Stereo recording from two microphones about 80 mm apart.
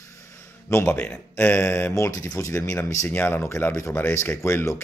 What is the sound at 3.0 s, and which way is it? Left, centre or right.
Speech, left.